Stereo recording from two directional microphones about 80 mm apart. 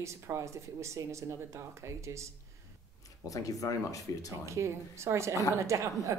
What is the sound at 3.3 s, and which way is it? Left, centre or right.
Speech, left.